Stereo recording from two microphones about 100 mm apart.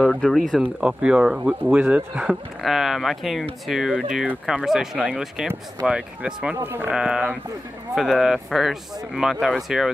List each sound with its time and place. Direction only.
0.0 s speech: 5° left (ahead or behind)
1.6 s speech: 20° right (ahead or behind)
2.6 s speech: centre (ahead or behind)
6.6 s speech: 20° right (ahead or behind)
6.9 s speech: 10° right (ahead or behind)